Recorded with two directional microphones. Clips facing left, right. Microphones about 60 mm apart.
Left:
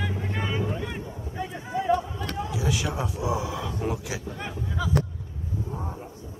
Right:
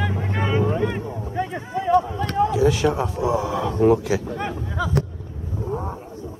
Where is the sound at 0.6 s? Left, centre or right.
Right.